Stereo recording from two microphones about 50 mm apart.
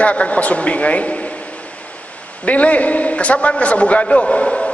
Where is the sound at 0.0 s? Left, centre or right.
Left.